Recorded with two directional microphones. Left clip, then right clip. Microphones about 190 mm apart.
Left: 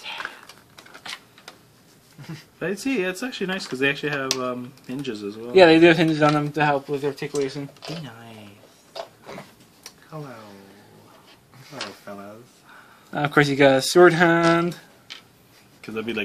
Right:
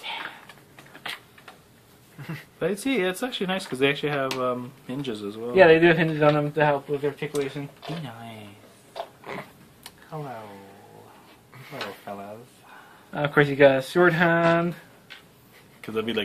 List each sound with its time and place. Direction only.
2.2 s speech: 20° right (ahead or behind)
5.5 s a man's voice: 60° left (ahead or behind)
9.2 s a sound: 15° right (ahead or behind)
13.1 s speech: 60° left (ahead or behind)
15.8 s speech: 30° right (ahead or behind)